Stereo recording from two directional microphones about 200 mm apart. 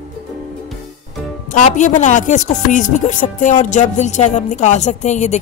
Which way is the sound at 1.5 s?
40° left (ahead or behind).